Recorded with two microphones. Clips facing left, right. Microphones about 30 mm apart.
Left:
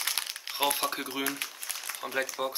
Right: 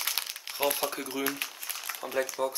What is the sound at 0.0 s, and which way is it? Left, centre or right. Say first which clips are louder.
Crumpling: even; centre.